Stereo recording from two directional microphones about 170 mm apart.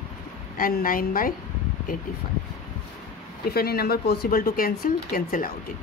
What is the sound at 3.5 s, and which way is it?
Speech, 65° left (ahead or behind).